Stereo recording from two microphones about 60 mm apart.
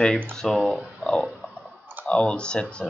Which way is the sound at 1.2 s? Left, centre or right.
Centre.